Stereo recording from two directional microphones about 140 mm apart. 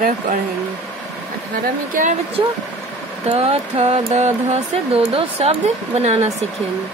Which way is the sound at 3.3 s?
45° right (ahead or behind).